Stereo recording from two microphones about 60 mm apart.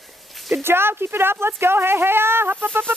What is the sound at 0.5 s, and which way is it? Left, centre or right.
Speech, right.